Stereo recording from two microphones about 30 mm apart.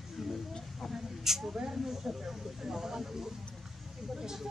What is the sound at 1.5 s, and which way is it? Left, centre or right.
Speech, right.